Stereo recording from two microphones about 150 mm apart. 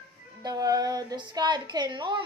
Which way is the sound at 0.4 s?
25° right (ahead or behind).